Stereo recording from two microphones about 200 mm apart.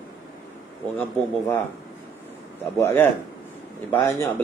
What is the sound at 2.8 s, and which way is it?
Speech, 10° left (ahead or behind).